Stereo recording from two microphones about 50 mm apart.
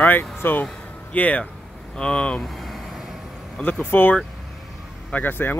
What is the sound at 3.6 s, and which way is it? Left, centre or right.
Speech, left.